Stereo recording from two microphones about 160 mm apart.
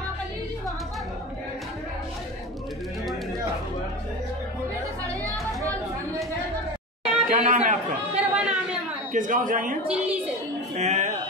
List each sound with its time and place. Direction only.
7.2 s chatter: 55° right (ahead or behind)
8.2 s a sound: 10° right (ahead or behind)
9.1 s speech: 55° right (ahead or behind)
9.8 s a woman's voice: 10° right (ahead or behind)
10.8 s speech: 45° right (ahead or behind)